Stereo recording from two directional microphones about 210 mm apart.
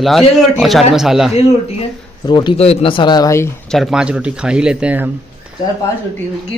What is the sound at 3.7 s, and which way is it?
Speech, centre (ahead or behind).